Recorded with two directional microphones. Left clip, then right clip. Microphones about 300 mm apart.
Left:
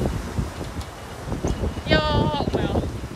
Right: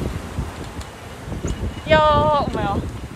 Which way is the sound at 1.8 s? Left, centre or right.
Centre.